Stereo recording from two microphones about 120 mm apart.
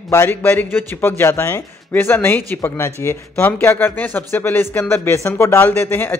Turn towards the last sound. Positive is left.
turn(degrees=20)  # may be behind; listen again after turning